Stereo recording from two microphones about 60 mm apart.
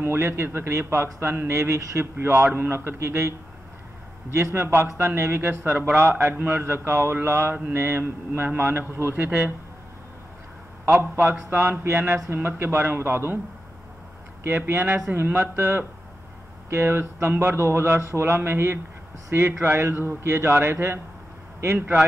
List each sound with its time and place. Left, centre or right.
0.0 s speech: right
2.1 s a man's voice: right
10.9 s a man's voice: right
14.4 s a man's voice: right